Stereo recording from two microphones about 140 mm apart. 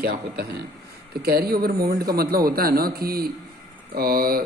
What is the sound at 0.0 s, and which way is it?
A man's voice, 90° right.